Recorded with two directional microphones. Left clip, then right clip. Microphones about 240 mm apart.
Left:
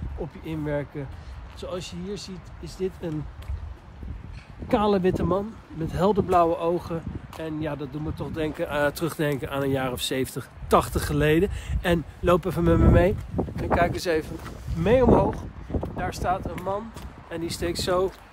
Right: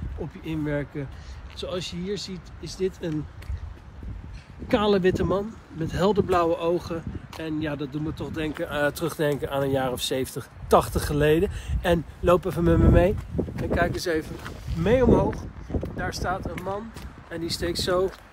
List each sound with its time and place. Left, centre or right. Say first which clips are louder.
0.5 s speech: right 1 dB; left
1.6 s speech: right 2 dB; left
4.6 s speech: right 1 dB; left
8.6 s speech: left 1 dB; left
8.9 s speech: right 1 dB; centre
13.7 s speech: left 2 dB; left